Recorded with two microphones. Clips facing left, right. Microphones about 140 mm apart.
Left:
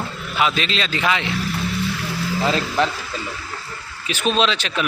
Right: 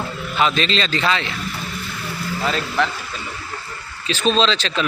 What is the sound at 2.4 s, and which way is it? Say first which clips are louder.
Speech: left 1 dB; 20° left (ahead or behind).